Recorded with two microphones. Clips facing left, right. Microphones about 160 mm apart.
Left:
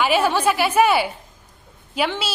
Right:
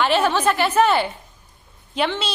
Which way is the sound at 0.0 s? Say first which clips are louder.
Even; 10° left (ahead or behind).